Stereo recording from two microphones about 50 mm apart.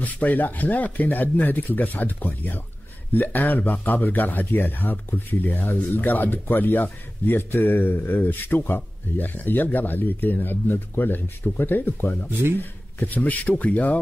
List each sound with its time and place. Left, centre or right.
0.0 s speech: left
12.3 s speech: right
12.5 s speech: left